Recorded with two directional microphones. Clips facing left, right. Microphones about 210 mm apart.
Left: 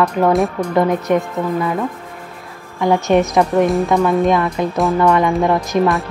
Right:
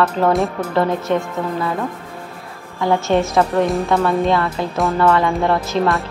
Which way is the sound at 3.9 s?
15° left (ahead or behind).